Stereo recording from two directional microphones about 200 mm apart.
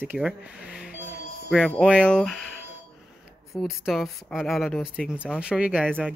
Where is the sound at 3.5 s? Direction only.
Centre (ahead or behind).